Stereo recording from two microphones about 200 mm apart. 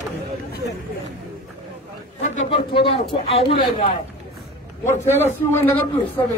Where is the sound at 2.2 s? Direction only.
35° left (ahead or behind).